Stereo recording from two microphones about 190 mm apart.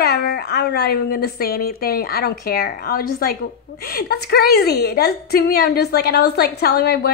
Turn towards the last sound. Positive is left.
turn(degrees=55)  # may be behind; listen again after turning